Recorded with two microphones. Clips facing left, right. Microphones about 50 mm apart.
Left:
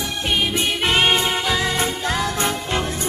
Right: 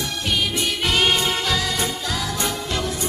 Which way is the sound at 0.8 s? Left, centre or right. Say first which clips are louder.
Left 2 dB; left.